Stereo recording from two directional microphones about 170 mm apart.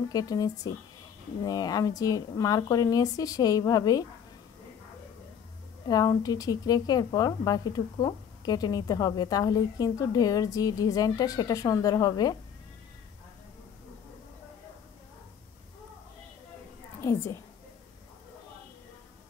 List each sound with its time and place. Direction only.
0.1 s speech: 20° left (ahead or behind)
5.9 s speech: 20° left (ahead or behind)
17.0 s a woman's voice: 15° left (ahead or behind)